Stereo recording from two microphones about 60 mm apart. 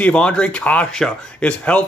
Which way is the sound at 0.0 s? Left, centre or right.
Centre.